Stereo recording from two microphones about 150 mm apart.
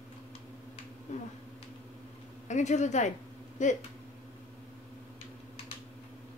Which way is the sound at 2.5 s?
50° left (ahead or behind).